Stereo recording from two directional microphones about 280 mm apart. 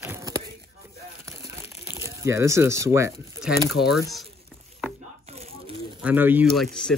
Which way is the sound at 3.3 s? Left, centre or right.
Centre.